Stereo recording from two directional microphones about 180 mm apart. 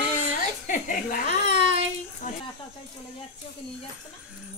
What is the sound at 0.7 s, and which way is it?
Laughter, 50° left (ahead or behind).